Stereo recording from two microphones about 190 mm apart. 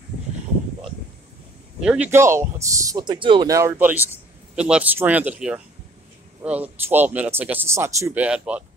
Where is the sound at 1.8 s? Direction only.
5° right (ahead or behind).